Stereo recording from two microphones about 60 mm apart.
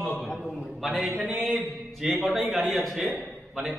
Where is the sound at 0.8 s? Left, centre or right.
Centre.